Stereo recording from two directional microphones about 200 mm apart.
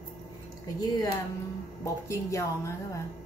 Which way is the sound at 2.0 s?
15° left (ahead or behind).